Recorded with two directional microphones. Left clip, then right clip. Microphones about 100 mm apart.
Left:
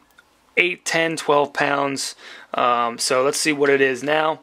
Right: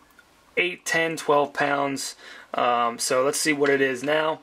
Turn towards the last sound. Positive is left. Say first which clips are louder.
# left 4 dB
turn(degrees=20)  # may be behind; listen again after turning